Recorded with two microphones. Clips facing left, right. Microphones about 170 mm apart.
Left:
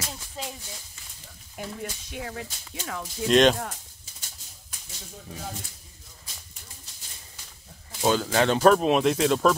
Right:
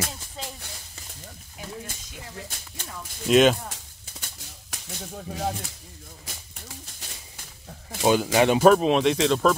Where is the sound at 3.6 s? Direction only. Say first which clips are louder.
Left 2 dB; 85° right.